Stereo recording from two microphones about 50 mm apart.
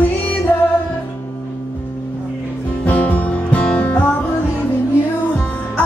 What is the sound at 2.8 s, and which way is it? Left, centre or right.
Music, left.